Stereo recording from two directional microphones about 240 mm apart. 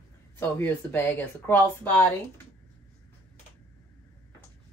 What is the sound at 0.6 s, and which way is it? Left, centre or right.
Speech, centre.